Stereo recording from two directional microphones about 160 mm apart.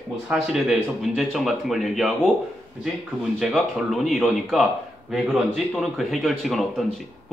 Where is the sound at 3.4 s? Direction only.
Centre (ahead or behind).